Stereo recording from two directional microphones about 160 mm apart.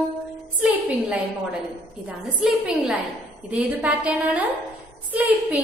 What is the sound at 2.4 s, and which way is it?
A woman's voice, 10° right (ahead or behind).